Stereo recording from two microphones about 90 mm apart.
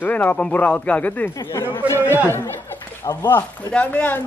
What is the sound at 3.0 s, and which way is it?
Speech, 45° left (ahead or behind).